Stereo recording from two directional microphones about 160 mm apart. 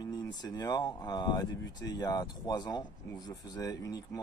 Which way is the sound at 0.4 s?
25° left (ahead or behind).